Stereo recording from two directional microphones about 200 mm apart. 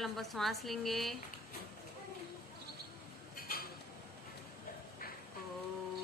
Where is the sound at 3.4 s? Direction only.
45° left (ahead or behind).